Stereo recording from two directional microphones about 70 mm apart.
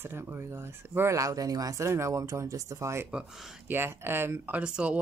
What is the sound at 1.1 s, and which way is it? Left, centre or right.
Speech, right.